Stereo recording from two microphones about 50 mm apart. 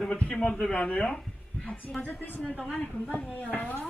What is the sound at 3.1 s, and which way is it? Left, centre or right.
Speech, left.